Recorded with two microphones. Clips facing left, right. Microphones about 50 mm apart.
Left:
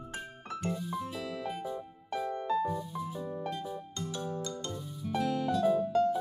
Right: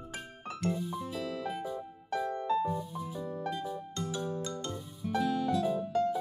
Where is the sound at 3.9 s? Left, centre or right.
Centre.